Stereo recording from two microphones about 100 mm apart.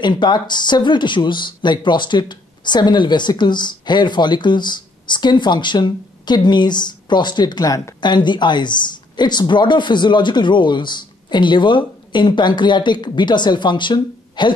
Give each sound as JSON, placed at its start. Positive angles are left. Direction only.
{"t": 0.0, "sound": "speech", "side_deg": 50}
{"t": 8.0, "sound": "speech", "side_deg": 50}